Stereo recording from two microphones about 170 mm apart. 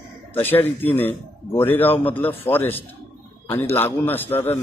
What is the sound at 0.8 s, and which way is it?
A man's voice, 10° left (ahead or behind).